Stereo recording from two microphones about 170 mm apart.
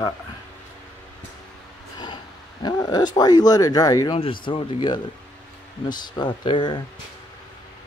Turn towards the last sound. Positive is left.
turn(degrees=25)  # may be behind; listen again after turning